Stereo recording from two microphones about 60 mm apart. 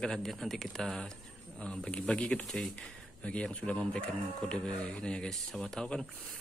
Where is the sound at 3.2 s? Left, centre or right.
Centre.